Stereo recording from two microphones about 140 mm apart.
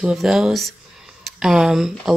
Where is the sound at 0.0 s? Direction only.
5° right (ahead or behind).